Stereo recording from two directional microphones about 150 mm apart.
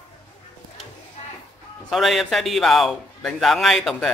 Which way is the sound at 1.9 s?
Centre (ahead or behind).